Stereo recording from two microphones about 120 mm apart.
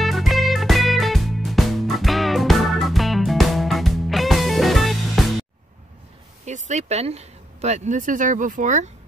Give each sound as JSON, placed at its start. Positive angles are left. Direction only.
{"t": 0.0, "sound": "music", "side_deg": 0}
{"t": 6.4, "sound": "speech", "side_deg": -80}